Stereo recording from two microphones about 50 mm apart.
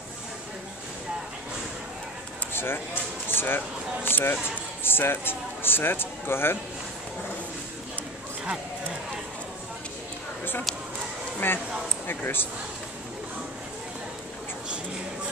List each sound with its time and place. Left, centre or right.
2.5 s speech: left
11.3 s speech: left